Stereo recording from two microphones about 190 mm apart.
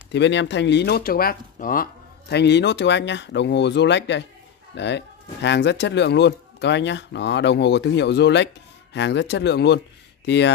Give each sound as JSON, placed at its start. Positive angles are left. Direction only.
{"t": 0.1, "sound": "speech", "side_deg": 70}